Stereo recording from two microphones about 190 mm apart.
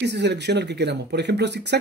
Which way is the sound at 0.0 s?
60° right (ahead or behind).